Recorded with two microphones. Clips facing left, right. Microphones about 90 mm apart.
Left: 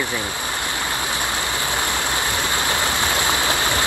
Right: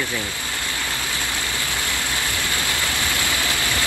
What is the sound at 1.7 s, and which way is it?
Stream, 20° left (ahead or behind).